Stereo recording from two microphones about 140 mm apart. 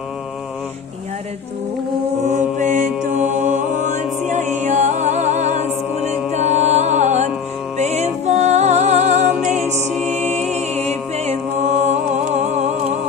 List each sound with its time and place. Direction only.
2.2 s mantra: 60° right (ahead or behind)
6.0 s music: 50° right (ahead or behind)
9.8 s mantra: 55° right (ahead or behind)